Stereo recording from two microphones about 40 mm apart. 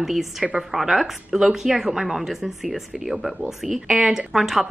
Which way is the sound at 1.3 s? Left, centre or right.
Centre.